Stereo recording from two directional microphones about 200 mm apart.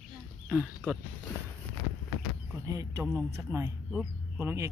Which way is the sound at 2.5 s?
15° right (ahead or behind).